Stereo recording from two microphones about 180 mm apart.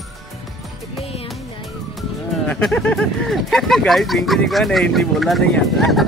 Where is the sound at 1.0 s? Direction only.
30° left (ahead or behind).